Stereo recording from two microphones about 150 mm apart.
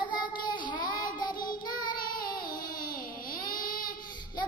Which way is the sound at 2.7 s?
75° left (ahead or behind).